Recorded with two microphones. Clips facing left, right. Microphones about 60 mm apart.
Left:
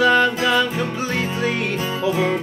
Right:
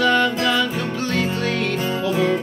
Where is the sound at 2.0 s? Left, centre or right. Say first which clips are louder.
Left 1 dB; centre.